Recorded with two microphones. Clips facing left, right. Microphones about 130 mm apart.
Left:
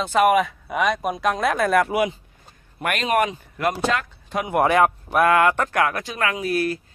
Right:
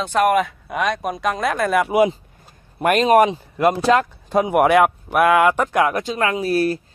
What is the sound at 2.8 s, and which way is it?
Speech, 35° right (ahead or behind).